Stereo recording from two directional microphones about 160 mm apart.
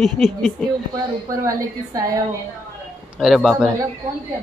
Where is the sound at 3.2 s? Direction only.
Centre (ahead or behind).